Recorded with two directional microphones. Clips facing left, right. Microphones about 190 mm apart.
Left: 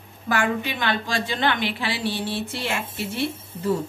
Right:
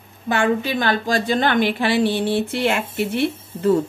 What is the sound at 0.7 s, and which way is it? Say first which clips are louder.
A woman's voice: right 5 dB; 40° right (ahead or behind).